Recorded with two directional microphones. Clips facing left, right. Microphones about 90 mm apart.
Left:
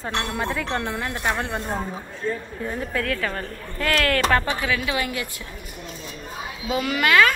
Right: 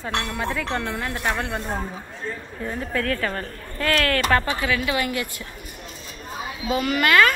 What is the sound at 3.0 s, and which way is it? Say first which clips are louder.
A woman's voice: right 1 dB; 30° right (ahead or behind).